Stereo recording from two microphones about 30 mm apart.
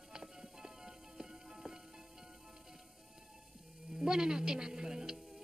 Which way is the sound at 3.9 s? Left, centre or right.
Right.